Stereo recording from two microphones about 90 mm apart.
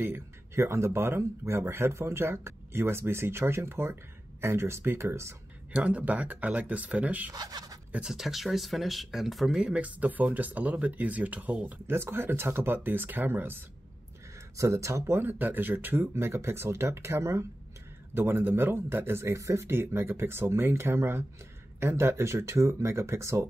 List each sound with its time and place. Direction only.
0.0 s speech: 30° right (ahead or behind)
5.7 s speech: 20° right (ahead or behind)
7.3 s speech: 45° right (ahead or behind)
7.9 s speech: 5° right (ahead or behind)
11.9 s speech: 25° right (ahead or behind)
14.6 s speech: 35° right (ahead or behind)